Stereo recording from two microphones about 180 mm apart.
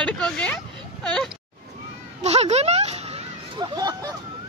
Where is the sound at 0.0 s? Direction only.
5° left (ahead or behind).